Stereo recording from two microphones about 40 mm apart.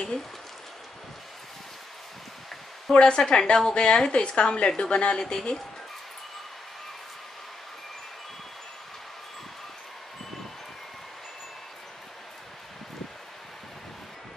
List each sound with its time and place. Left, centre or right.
2.9 s a woman's voice: left